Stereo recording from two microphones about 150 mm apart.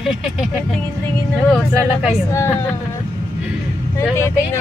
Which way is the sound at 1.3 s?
10° left (ahead or behind).